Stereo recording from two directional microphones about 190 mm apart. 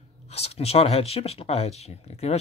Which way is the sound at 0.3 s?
35° left (ahead or behind).